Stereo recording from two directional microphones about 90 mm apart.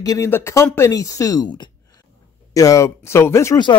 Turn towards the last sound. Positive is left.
turn(degrees=30)  # may be behind; listen again after turning